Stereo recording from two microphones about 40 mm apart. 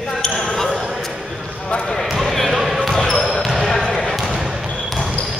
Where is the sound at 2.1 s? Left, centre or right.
Centre.